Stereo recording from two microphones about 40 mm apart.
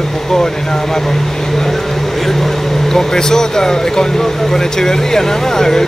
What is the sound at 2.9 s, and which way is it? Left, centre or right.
A man's voice, centre.